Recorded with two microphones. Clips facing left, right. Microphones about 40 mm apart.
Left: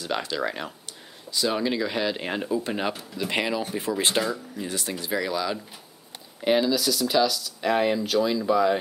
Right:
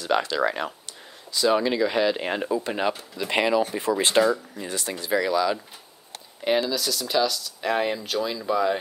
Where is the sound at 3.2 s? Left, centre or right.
Right.